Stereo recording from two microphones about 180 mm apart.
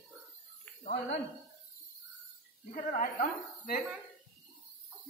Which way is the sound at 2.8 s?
45° left (ahead or behind).